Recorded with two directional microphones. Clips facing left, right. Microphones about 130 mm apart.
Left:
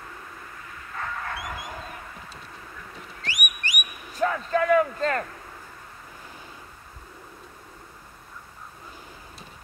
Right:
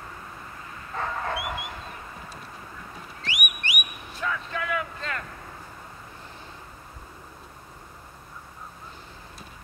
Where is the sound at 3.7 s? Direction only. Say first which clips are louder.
Right 1 dB; 40° left (ahead or behind).